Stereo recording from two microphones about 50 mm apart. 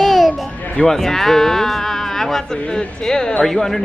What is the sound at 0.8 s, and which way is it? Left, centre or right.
Speech, centre.